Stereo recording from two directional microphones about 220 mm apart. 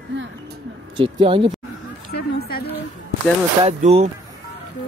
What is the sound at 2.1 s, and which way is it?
Speech, 45° left (ahead or behind).